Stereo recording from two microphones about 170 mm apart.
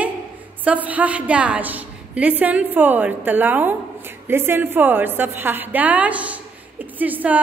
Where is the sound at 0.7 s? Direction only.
10° right (ahead or behind).